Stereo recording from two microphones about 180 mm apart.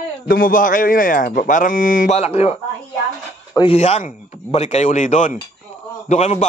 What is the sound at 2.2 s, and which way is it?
Speech, 35° left (ahead or behind).